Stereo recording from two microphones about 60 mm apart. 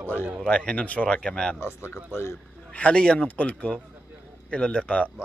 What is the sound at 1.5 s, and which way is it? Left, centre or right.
Speech, left.